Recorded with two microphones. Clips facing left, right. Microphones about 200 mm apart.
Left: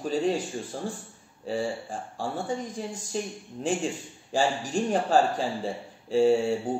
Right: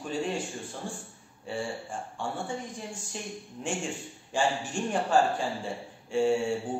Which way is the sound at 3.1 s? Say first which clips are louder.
Left 6 dB; 35° left (ahead or behind).